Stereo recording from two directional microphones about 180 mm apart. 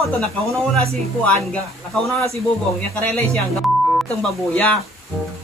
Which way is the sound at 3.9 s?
5° left (ahead or behind).